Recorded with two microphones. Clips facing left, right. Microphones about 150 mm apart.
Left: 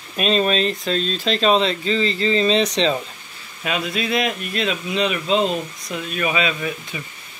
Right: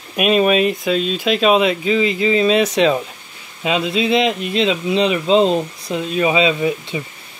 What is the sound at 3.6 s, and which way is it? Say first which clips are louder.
Speech: right 6 dB; 25° right (ahead or behind).